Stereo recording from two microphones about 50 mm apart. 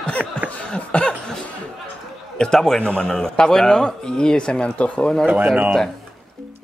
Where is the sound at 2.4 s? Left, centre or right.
Centre.